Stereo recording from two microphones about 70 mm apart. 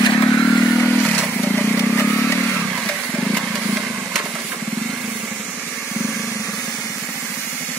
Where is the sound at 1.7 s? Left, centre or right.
Left.